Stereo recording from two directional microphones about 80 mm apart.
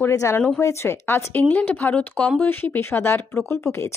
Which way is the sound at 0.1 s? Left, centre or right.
Left.